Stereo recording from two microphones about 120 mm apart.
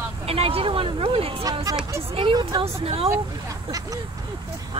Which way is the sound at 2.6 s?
55° right (ahead or behind).